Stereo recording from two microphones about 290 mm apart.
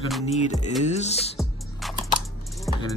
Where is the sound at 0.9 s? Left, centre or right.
Left.